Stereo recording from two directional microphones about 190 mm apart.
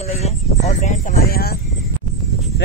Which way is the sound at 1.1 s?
50° left (ahead or behind).